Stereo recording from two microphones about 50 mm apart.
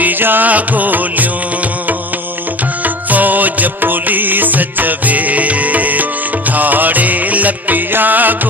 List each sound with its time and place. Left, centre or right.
0.0 s music: right
2.8 s music: right